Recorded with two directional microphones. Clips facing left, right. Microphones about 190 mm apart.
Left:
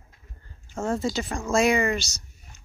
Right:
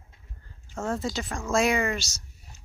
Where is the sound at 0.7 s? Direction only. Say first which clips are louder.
Left 3 dB; centre (ahead or behind).